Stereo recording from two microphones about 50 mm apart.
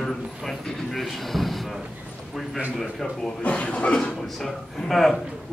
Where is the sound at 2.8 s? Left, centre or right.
Centre.